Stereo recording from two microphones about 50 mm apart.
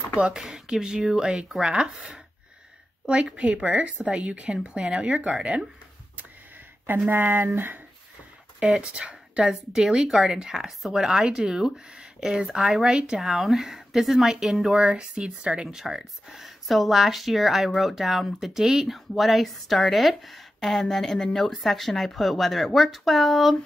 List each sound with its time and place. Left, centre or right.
0.1 s speech: centre
3.3 s speech: right
7.1 s speech: right
8.7 s speech: right
12.4 s speech: centre
12.9 s speech: centre
13.2 s speech: centre; by 15.7 s right
15.7 s speech: centre